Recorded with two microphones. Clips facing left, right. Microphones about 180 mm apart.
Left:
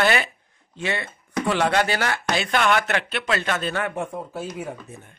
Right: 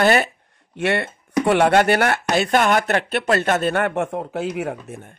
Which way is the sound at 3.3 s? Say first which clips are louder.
Right 6 dB; 45° right (ahead or behind).